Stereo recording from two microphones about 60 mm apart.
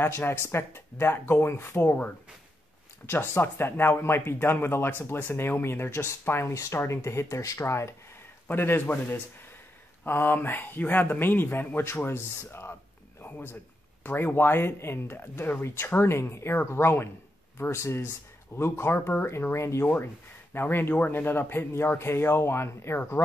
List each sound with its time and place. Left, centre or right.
0.0 s speech: left
8.5 s a man's voice: left
20.5 s speech: left